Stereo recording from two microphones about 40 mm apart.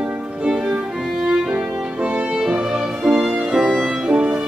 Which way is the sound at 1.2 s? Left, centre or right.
Centre.